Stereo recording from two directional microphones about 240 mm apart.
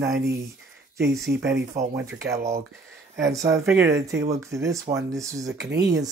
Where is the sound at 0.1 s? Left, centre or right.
Right.